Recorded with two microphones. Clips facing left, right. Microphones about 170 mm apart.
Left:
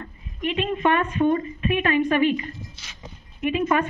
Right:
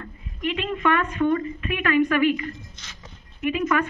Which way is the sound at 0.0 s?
20° left (ahead or behind).